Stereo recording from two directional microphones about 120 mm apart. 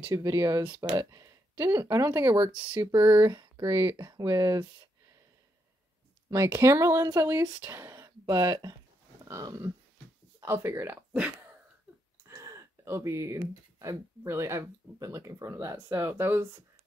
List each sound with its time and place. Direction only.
0.1 s speech: 25° right (ahead or behind)
3.3 s speech: 30° right (ahead or behind)
6.3 s speech: 20° right (ahead or behind)
9.2 s a sound: 30° right (ahead or behind)
10.4 s speech: 20° right (ahead or behind)
12.3 s speech: 25° right (ahead or behind)